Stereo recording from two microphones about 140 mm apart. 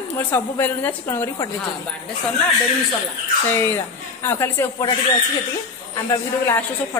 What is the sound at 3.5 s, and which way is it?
A woman's voice, 15° left (ahead or behind).